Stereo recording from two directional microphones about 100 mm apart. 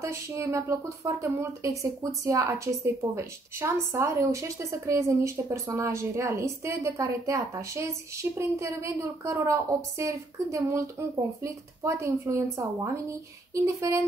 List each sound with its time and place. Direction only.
0.0 s a woman's voice: 30° right (ahead or behind)